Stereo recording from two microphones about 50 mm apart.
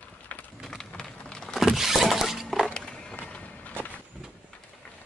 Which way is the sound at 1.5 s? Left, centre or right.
Centre.